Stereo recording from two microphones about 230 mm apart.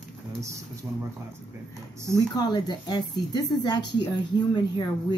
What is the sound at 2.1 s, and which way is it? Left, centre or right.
Speech, centre.